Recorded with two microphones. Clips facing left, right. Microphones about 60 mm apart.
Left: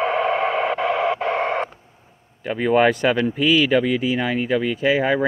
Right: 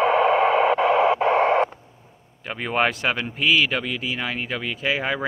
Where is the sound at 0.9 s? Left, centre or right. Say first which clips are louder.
Right 3 dB; centre.